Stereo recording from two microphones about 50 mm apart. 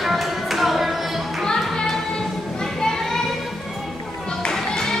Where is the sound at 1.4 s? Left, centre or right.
Centre.